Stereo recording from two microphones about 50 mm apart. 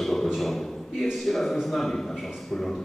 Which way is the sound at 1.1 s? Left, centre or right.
Centre.